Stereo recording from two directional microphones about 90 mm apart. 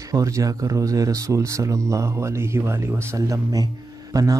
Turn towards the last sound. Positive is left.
turn(degrees=-40)  # may be behind; listen again after turning